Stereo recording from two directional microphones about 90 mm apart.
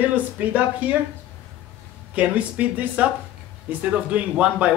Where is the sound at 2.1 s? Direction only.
15° right (ahead or behind).